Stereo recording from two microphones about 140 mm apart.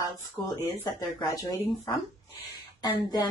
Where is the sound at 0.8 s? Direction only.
25° left (ahead or behind).